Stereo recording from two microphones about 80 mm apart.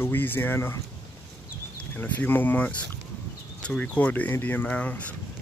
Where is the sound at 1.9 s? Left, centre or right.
Left.